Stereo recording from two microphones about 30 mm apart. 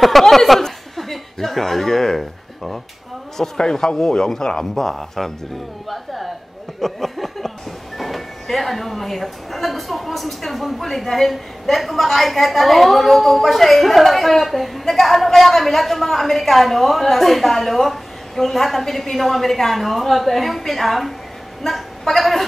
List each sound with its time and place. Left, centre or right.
0.0 s speech: centre
3.7 s speech: centre
4.7 s speech: centre
6.8 s a sound: centre
8.0 s speech: centre
22.1 s speech: centre